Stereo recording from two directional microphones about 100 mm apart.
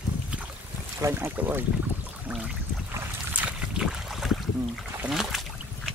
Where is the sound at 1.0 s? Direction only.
25° right (ahead or behind).